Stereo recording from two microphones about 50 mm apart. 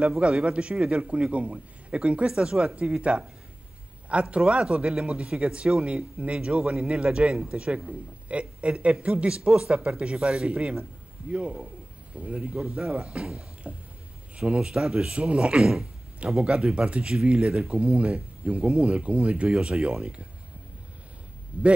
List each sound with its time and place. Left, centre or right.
0.2 s a man's voice: right
21.5 s speech: right